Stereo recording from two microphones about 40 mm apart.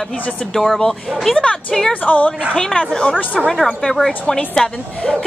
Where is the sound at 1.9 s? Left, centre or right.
Left.